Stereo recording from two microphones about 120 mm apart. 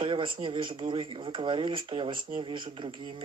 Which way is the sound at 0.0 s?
45° right (ahead or behind).